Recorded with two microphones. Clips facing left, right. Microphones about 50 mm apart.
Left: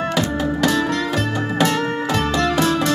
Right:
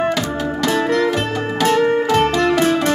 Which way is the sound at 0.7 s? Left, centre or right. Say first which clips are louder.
Right 5 dB; right.